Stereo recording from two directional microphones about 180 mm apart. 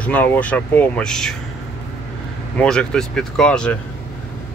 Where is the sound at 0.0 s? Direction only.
10° left (ahead or behind).